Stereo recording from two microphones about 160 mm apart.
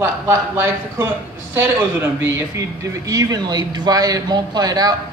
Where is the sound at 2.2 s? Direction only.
20° right (ahead or behind).